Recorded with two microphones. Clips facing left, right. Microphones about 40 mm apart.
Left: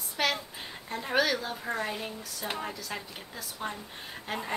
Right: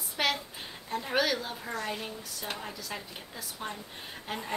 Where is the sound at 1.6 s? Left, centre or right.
Centre.